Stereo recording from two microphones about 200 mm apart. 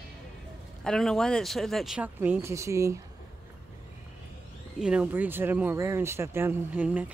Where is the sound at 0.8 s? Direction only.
5° left (ahead or behind); by 3.0 s 15° right (ahead or behind).